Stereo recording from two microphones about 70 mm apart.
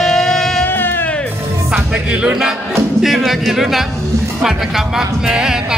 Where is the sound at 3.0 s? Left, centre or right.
Centre.